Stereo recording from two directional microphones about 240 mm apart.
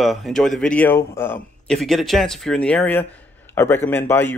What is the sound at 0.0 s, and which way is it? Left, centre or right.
Speech, centre.